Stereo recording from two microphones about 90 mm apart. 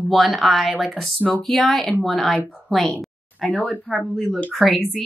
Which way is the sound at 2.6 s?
Centre (ahead or behind).